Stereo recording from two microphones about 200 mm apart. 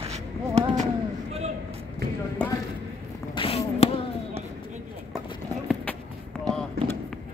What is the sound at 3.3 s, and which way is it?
Basketball bounce, 25° left (ahead or behind).